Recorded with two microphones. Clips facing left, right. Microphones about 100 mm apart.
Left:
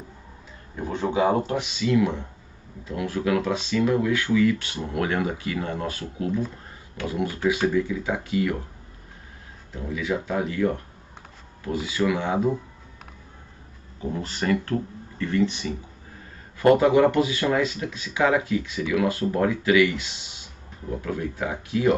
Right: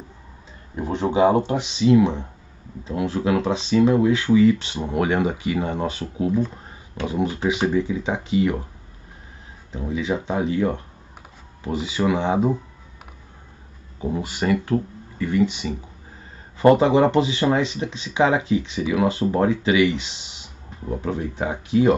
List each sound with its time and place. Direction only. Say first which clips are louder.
0.7 s speech: right 4 dB; 20° right (ahead or behind)
9.8 s speech: right 3 dB; 20° right (ahead or behind)
14.1 s speech: right 3 dB; 15° right (ahead or behind)